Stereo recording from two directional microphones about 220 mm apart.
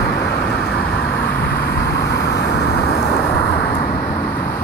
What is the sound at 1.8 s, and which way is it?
Vehicle, 50° left (ahead or behind).